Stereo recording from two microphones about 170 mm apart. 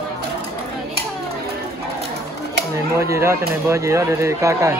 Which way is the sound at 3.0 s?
15° right (ahead or behind).